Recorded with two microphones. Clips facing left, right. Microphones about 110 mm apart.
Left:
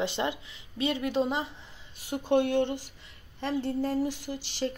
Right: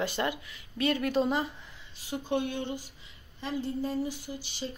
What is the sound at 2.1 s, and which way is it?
Speech, 65° left (ahead or behind).